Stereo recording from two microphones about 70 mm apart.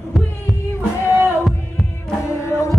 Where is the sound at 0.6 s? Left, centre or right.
Left.